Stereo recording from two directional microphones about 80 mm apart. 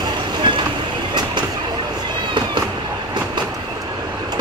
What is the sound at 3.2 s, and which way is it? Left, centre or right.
Train, right.